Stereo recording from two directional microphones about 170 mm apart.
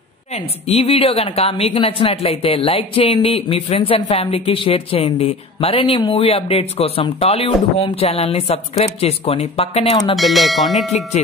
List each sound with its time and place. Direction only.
0.3 s speech: 35° left (ahead or behind)
10.1 s bell: centre (ahead or behind)